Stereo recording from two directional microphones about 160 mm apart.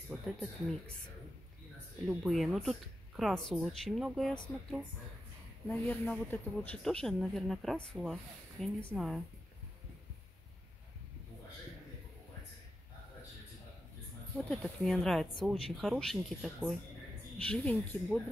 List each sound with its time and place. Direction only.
0.1 s speech: 5° left (ahead or behind)
2.0 s speech: centre (ahead or behind)
5.7 s speech: 10° left (ahead or behind)
14.3 s speech: 5° left (ahead or behind)